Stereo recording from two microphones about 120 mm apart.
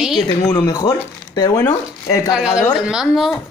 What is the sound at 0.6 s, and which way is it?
Speech, 30° left (ahead or behind).